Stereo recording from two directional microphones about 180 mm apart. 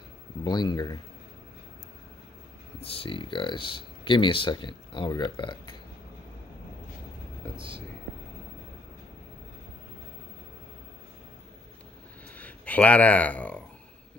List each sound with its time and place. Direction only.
0.4 s speech: 25° left (ahead or behind)
2.8 s speech: 30° left (ahead or behind)
7.5 s speech: 30° right (ahead or behind)
12.4 s a sound: 10° left (ahead or behind)